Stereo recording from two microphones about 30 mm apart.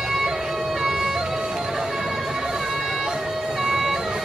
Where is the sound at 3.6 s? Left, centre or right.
Centre.